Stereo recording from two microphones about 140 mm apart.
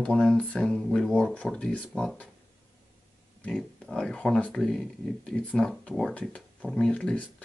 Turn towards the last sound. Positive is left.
turn(degrees=5)  # may be behind; listen again after turning